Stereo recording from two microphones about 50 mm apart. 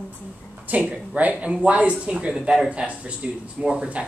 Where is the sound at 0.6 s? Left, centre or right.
Right.